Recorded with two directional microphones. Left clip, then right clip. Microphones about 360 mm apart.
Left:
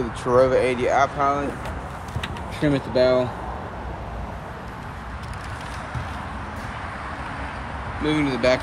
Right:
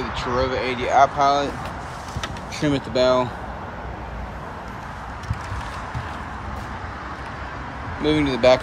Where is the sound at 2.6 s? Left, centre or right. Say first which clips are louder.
Even; right.